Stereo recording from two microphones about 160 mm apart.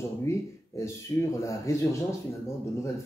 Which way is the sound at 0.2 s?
15° left (ahead or behind).